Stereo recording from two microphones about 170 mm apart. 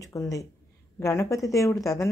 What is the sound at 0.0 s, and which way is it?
Speech, 20° left (ahead or behind).